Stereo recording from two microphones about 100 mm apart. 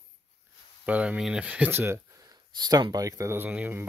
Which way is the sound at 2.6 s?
40° right (ahead or behind).